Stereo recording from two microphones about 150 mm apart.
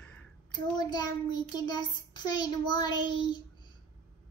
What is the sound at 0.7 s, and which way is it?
Child singing, 25° left (ahead or behind).